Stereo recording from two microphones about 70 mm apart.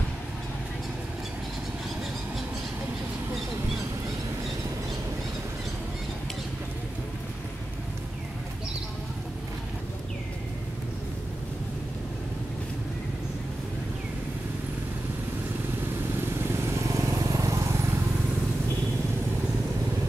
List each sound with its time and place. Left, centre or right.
16.7 s vehicle: right